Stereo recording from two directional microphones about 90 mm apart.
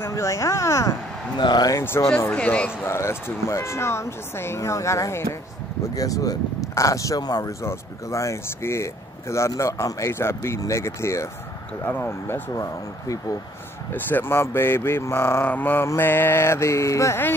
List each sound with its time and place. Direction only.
0.1 s speech: 35° left (ahead or behind)
1.4 s speech: 55° left (ahead or behind)
1.7 s speech: 30° left (ahead or behind)
2.3 s speech: 15° left (ahead or behind)
2.9 s speech: 30° left (ahead or behind)
7.6 s speech: 35° left (ahead or behind)
13.9 s speech: 25° left (ahead or behind)
15.4 s speech: 20° left (ahead or behind)